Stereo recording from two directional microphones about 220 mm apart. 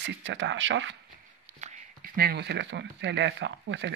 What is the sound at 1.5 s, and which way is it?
Speech, 35° right (ahead or behind).